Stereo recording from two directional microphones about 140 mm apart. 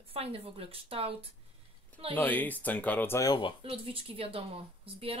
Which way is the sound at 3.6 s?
40° right (ahead or behind).